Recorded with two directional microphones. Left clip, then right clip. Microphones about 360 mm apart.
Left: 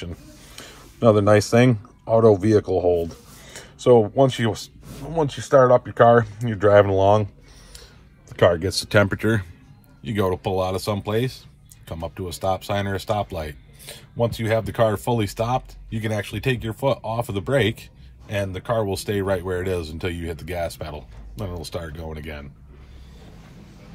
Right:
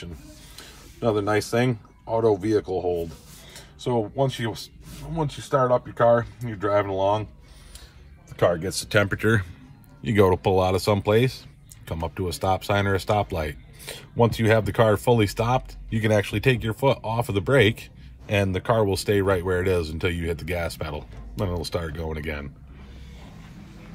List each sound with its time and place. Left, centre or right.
0.6 s speech: left
4.9 s speech: left
8.4 s speech: left; by 9.5 s centre
10.0 s speech: centre